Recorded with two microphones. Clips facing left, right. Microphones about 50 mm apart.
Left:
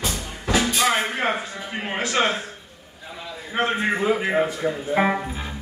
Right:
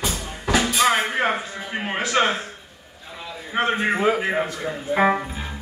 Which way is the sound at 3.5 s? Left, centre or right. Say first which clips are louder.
Right 1 dB; centre.